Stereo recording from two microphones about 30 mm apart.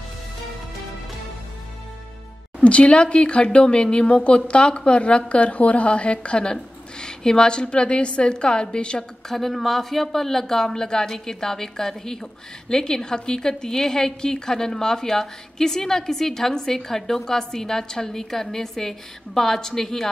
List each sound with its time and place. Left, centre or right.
2.6 s speech: left
9.3 s speech: centre